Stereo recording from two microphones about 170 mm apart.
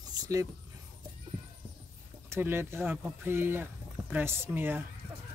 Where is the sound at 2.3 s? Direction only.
15° right (ahead or behind).